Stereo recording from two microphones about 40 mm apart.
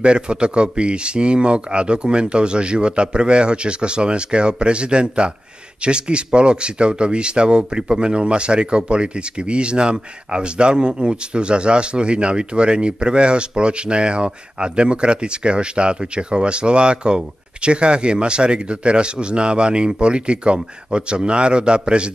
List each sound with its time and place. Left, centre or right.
0.0 s speech: right